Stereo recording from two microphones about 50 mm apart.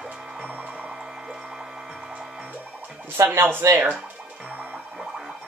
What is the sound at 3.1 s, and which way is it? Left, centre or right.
Speech, right.